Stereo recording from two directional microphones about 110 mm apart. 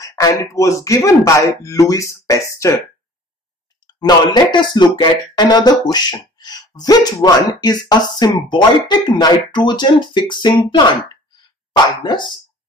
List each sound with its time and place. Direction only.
0.0 s speech: 30° left (ahead or behind)
3.8 s speech: 40° left (ahead or behind)
11.7 s speech: 40° left (ahead or behind)